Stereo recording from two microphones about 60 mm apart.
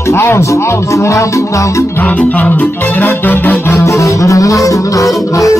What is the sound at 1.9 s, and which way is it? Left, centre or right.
Music, left.